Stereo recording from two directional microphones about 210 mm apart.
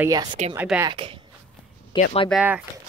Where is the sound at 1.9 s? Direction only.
20° left (ahead or behind).